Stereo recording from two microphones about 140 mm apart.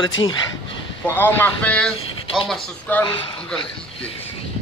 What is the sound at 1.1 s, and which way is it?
Speech, 15° left (ahead or behind).